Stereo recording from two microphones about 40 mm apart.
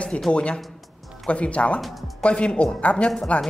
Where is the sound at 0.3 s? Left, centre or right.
Left.